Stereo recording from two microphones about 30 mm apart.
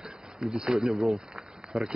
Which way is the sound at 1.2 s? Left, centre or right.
Right.